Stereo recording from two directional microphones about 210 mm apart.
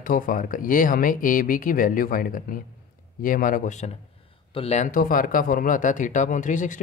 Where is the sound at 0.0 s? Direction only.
40° left (ahead or behind).